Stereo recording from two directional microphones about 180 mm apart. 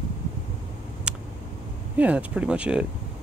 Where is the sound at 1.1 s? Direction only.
5° right (ahead or behind).